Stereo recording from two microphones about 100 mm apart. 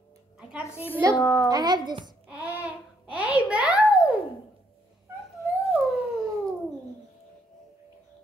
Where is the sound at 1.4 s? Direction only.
45° right (ahead or behind).